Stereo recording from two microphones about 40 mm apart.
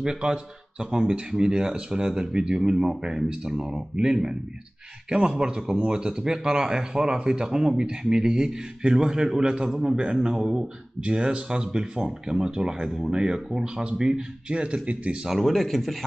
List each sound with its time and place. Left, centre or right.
0.0 s speech: centre
9.7 s speech: centre
9.9 s speech: centre
15.4 s a man's voice: centre